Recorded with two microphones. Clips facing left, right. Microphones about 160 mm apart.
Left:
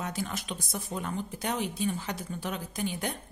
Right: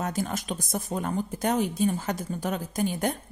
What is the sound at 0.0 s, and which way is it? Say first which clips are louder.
A woman's voice: right 5 dB; 45° right (ahead or behind).